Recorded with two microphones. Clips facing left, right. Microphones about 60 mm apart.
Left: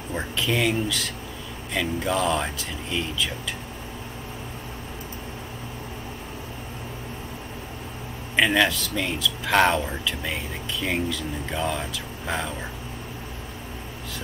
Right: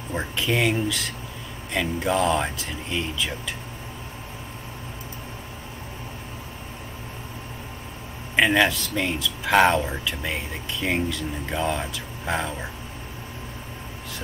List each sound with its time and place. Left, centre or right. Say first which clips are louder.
0.1 s speech: right 1 dB; centre
8.4 s speech: right 1 dB; centre